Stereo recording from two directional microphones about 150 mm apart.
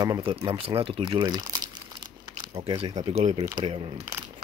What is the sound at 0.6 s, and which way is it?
Crumpling, 35° right (ahead or behind).